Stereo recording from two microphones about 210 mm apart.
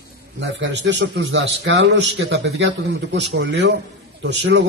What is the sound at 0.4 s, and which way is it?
A man's voice, 60° right (ahead or behind).